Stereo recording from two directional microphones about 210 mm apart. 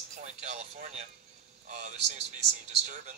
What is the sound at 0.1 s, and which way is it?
Speech, 35° right (ahead or behind).